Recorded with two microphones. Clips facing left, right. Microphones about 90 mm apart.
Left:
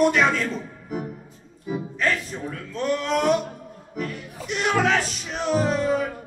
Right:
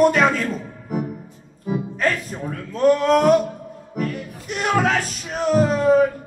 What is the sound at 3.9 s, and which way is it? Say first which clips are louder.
Music: right 5 dB; 45° right (ahead or behind).